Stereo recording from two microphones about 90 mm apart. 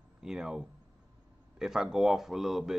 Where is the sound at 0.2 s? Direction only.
5° right (ahead or behind).